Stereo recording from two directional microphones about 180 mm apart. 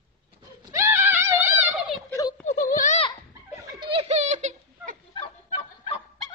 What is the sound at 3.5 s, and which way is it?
Giggle, 25° right (ahead or behind).